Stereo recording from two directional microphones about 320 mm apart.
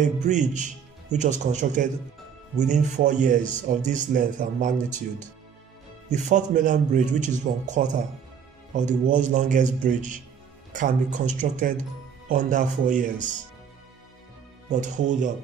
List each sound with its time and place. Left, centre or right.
0.0 s speech: right
6.2 s speech: right
14.7 s speech: right